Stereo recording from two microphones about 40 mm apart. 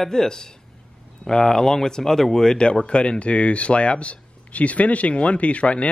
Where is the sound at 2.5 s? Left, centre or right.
Left.